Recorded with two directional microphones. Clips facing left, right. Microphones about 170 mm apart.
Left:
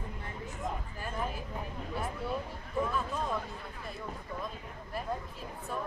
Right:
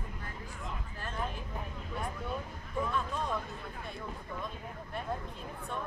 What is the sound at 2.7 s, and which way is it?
Speech, 5° left (ahead or behind).